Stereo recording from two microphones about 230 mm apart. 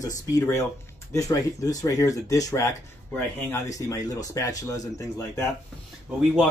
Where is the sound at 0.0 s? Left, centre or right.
Centre.